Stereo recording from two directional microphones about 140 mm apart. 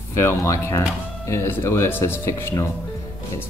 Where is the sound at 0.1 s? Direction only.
20° left (ahead or behind).